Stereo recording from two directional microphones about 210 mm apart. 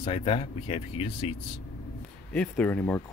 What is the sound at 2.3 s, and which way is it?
Speech, 5° left (ahead or behind).